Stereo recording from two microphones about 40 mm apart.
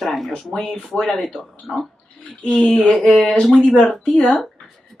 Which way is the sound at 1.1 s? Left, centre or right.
Left.